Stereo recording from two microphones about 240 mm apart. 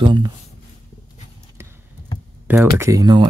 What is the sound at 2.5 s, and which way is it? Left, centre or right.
Speech, centre.